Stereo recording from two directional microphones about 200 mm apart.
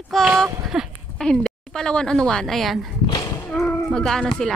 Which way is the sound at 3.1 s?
20° left (ahead or behind).